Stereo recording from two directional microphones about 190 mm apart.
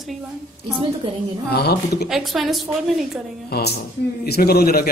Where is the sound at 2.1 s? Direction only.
Centre (ahead or behind).